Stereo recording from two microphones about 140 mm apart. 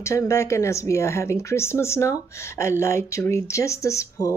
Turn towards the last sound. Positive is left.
turn(degrees=20)  # may be behind; listen again after turning